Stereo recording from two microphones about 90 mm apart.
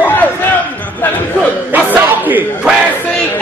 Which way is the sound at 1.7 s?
20° right (ahead or behind).